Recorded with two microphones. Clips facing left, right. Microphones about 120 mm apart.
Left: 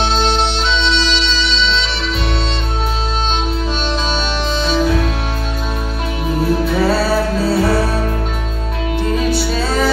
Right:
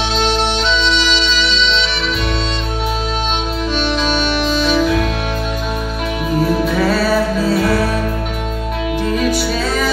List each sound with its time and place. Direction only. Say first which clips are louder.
4.6 s music: even; 30° left (ahead or behind)
6.8 s music: even; 30° left (ahead or behind)
9.1 s music: even; 30° left (ahead or behind)